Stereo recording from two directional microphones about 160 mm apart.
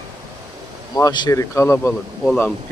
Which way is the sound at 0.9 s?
25° left (ahead or behind).